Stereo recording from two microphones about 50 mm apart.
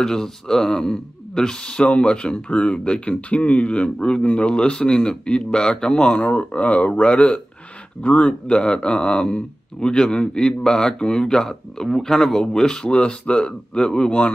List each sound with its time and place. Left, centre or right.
0.0 s speech: centre
6.1 s speech: left